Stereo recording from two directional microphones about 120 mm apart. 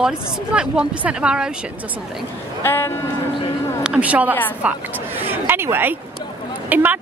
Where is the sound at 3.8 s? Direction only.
10° right (ahead or behind).